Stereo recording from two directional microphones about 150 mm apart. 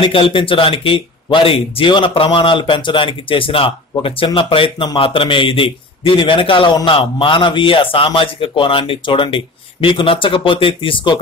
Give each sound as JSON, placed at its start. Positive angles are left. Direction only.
{"t": 0.0, "sound": "speech", "side_deg": 35}